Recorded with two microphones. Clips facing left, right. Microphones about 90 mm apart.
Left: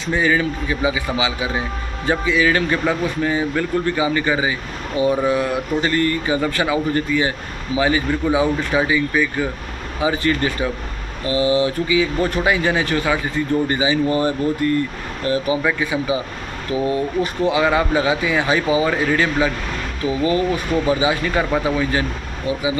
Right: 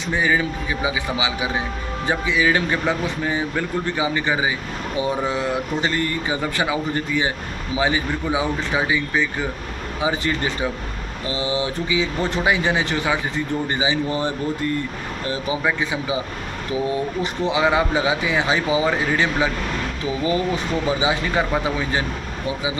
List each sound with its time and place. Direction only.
0.0 s a man's voice: 15° right (ahead or behind)
17.5 s speech: 20° right (ahead or behind)